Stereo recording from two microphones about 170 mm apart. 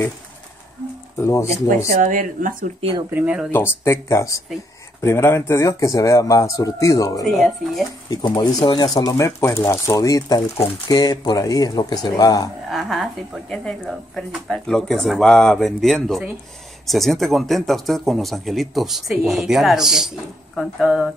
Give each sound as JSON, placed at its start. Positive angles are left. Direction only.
{"t": 1.1, "sound": "speech", "side_deg": 15}
{"t": 1.9, "sound": "speech", "side_deg": -50}
{"t": 3.1, "sound": "speech", "side_deg": -10}
{"t": 3.5, "sound": "speech", "side_deg": 15}
{"t": 12.6, "sound": "speech", "side_deg": 0}